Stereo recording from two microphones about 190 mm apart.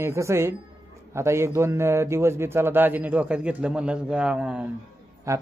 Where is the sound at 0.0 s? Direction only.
15° right (ahead or behind).